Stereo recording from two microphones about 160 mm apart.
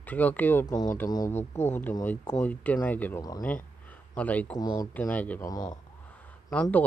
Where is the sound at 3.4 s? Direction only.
10° left (ahead or behind).